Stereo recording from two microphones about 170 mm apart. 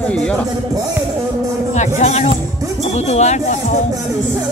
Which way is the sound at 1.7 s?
45° left (ahead or behind).